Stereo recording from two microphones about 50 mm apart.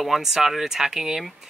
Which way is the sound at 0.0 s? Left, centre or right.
Centre.